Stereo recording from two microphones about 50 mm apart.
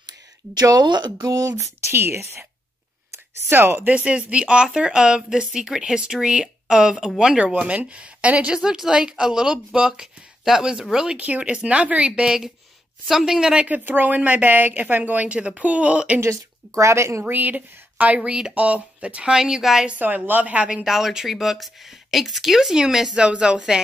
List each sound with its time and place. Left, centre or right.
1.9 s speech: right
3.4 s speech: right
3.8 s speech: right
8.5 s speech: centre
11.1 s speech: right; by 13.7 s centre
13.7 s speech: right
16.2 s speech: right
17.3 s speech: right
19.3 s speech: centre
19.9 s speech: right
20.8 s speech: centre
23.1 s speech: centre